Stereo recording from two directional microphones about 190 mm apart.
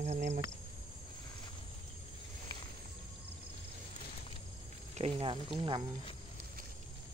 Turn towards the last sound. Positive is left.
turn(degrees=-25)  # may be behind; listen again after turning